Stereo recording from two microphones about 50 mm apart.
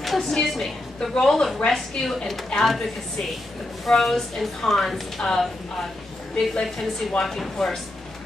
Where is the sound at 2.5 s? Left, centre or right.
Centre.